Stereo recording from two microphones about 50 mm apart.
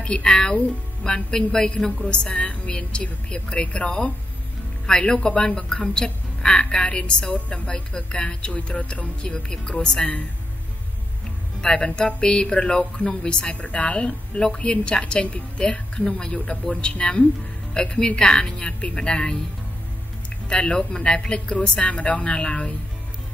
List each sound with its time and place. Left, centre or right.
0.0 s a woman's voice: centre
11.6 s a woman's voice: centre
20.4 s speech: centre